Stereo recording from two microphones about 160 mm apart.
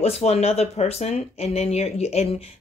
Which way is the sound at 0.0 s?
40° left (ahead or behind).